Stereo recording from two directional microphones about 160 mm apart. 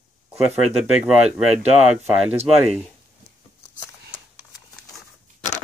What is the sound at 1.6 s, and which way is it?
Speech, 45° right (ahead or behind).